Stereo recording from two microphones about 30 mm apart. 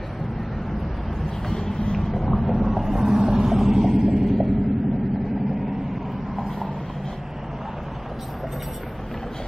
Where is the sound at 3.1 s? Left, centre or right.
Right.